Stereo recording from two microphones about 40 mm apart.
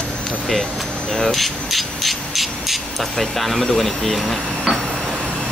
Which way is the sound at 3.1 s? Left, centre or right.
Centre.